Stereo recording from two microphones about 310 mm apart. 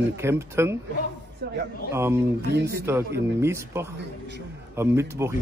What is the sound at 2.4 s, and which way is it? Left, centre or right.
Speech, right.